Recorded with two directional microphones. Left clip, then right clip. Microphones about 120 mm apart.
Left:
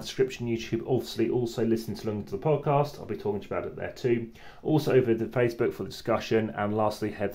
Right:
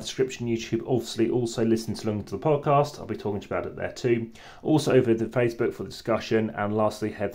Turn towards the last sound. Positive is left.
turn(degrees=-10)  # may be behind; listen again after turning